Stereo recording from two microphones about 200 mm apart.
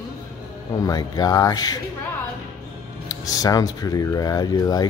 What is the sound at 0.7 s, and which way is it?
Speech, 15° left (ahead or behind).